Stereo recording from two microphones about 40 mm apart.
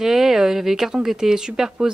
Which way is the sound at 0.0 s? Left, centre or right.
Centre.